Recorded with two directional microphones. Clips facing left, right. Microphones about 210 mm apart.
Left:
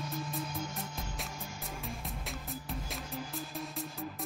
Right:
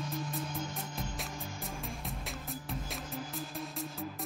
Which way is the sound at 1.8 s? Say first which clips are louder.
Even; centre (ahead or behind).